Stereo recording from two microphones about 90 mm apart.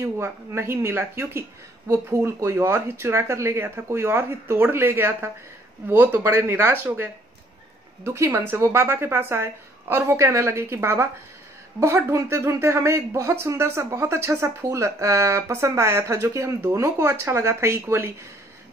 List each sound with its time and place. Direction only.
0.0 s speech: 30° right (ahead or behind)